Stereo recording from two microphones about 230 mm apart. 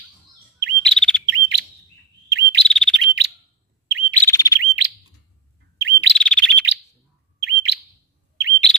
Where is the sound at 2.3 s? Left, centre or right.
Right.